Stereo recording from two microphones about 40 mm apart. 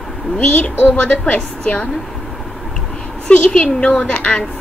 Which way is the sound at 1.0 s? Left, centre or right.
Left.